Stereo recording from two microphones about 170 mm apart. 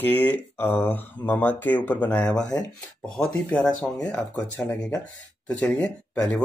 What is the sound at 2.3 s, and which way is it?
Speech, 20° left (ahead or behind).